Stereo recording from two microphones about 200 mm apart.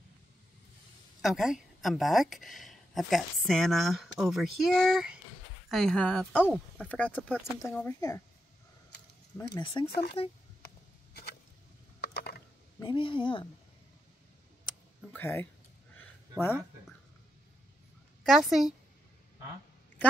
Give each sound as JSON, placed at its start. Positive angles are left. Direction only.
{"t": 1.2, "sound": "speech", "side_deg": 0}
{"t": 9.6, "sound": "speech", "side_deg": 25}
{"t": 9.8, "sound": "speech", "side_deg": 55}
{"t": 12.0, "sound": "mechanisms", "side_deg": 55}
{"t": 12.8, "sound": "speech", "side_deg": 25}
{"t": 15.1, "sound": "speech", "side_deg": 10}
{"t": 16.0, "sound": "a sound", "side_deg": 10}
{"t": 18.2, "sound": "speech", "side_deg": 0}